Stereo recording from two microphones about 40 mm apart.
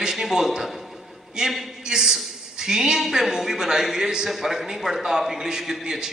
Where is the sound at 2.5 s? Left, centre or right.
Centre.